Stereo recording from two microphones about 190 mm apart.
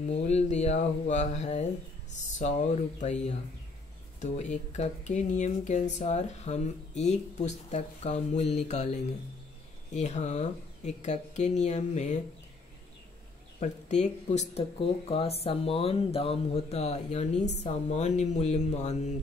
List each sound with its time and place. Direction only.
0.1 s speech: 35° left (ahead or behind)
4.2 s speech: 35° left (ahead or behind)
13.6 s speech: 35° left (ahead or behind)